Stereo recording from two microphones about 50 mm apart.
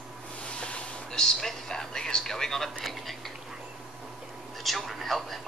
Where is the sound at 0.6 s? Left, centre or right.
Left.